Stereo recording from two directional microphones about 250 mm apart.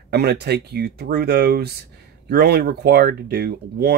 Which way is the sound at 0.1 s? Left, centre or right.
Right.